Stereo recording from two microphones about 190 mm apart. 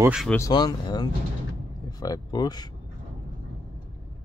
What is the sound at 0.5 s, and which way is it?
Speech, 20° left (ahead or behind).